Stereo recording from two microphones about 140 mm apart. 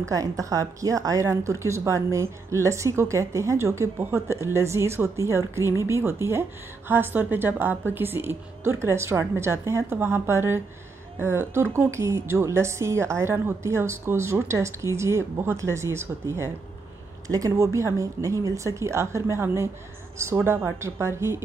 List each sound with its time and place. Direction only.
0.0 s a woman's voice: 25° right (ahead or behind)